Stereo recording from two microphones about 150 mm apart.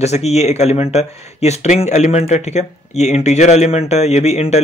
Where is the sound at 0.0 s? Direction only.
45° left (ahead or behind).